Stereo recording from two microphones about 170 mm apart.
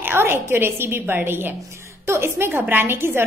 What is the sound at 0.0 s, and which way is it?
A woman's voice, 15° right (ahead or behind).